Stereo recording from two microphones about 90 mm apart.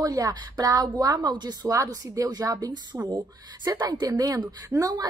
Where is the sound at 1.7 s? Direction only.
40° right (ahead or behind).